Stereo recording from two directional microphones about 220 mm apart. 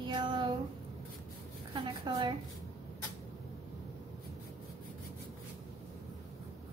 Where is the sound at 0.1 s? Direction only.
20° right (ahead or behind).